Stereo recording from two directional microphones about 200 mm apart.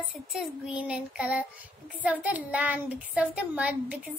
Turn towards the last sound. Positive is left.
turn(degrees=-5)  # may be behind; listen again after turning